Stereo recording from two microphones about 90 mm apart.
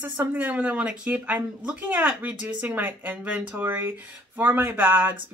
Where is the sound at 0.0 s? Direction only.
20° right (ahead or behind).